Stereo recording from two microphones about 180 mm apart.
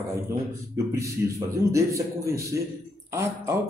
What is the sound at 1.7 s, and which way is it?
Speech, 15° right (ahead or behind).